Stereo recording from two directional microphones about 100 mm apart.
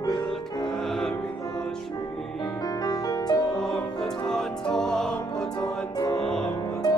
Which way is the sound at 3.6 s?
5° left (ahead or behind).